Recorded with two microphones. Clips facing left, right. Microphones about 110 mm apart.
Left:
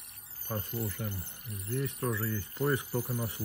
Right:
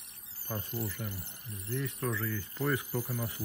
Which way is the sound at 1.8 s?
25° left (ahead or behind).